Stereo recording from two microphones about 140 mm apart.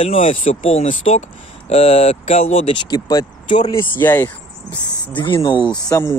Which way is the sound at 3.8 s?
15° left (ahead or behind).